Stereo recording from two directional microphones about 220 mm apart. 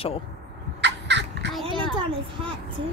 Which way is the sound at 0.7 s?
55° right (ahead or behind).